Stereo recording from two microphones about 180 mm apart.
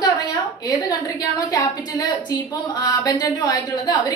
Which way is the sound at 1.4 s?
20° left (ahead or behind).